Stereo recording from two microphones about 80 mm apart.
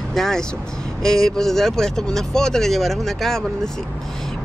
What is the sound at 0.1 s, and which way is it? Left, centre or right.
Speech, centre.